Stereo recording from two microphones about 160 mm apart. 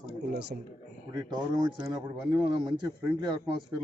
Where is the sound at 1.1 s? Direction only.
25° right (ahead or behind).